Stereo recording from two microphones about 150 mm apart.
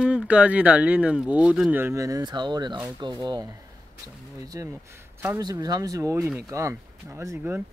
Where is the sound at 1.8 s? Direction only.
20° right (ahead or behind).